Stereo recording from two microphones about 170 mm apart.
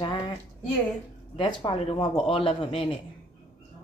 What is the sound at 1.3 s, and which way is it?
A man's voice, 30° left (ahead or behind).